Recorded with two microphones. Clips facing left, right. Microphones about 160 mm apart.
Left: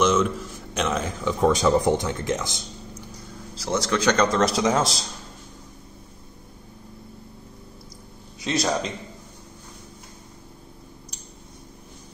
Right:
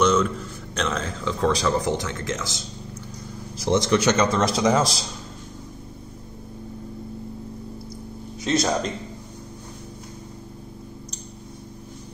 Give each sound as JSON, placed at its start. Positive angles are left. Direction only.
{"t": 0.0, "sound": "a man's voice", "side_deg": 5}
{"t": 3.6, "sound": "a man's voice", "side_deg": -20}
{"t": 4.2, "sound": "speech", "side_deg": 0}
{"t": 8.4, "sound": "speech", "side_deg": 0}